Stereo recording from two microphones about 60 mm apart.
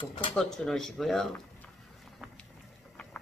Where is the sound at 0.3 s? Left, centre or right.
Centre.